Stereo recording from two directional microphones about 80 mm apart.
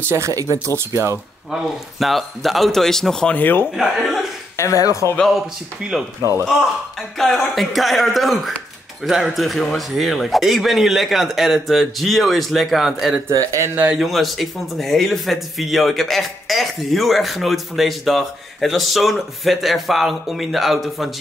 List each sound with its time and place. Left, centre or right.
0.0 s speech: right
1.5 s speech: centre
3.3 s a man's voice: left
3.7 s speech: centre
4.6 s speech: left
6.4 s speech: centre
13.3 s speech: right
13.9 s speech: centre